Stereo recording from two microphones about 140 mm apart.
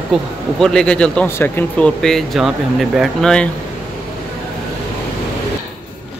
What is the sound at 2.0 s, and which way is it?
Speech, 5° left (ahead or behind).